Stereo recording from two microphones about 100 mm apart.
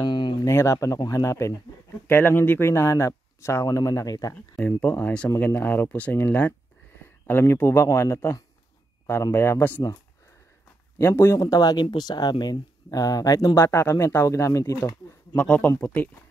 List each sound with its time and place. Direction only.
0.0 s a sound: 50° left (ahead or behind)
0.5 s speech: 30° left (ahead or behind)
2.0 s speech: 20° left (ahead or behind); by 4.4 s 35° left (ahead or behind)
4.6 s speech: 15° left (ahead or behind)
11.0 s speech: 25° left (ahead or behind)
13.6 s speech: 25° left (ahead or behind)
15.3 s speech: 15° left (ahead or behind)